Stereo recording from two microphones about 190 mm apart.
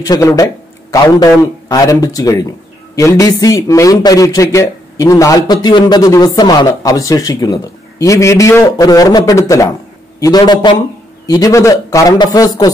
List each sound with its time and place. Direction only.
0.0 s a man's voice: 15° left (ahead or behind)